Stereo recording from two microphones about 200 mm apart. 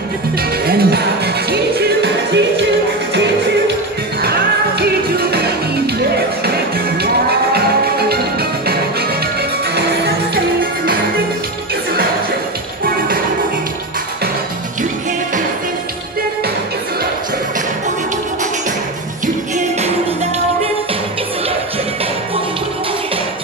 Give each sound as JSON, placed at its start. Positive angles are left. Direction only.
{"t": 0.4, "sound": "music", "side_deg": -50}
{"t": 19.2, "sound": "music", "side_deg": -35}